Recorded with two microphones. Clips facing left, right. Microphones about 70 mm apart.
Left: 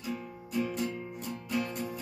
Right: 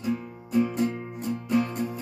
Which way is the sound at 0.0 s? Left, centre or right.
Right.